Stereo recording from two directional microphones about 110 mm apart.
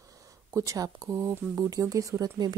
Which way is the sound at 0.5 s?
30° right (ahead or behind).